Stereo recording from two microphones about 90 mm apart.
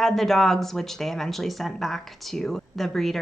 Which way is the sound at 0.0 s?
5° left (ahead or behind).